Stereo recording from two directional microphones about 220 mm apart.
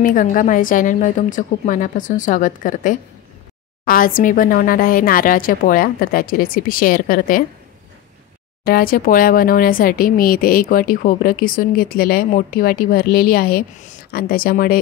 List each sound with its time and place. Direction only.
0.0 s speech: 35° left (ahead or behind)
8.6 s speech: 40° left (ahead or behind)